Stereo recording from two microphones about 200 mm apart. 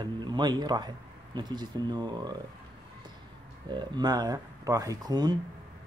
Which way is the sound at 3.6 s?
20° right (ahead or behind).